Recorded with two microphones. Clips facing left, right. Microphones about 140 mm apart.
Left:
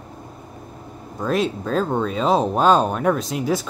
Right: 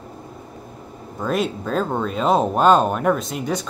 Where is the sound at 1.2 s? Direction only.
Centre (ahead or behind).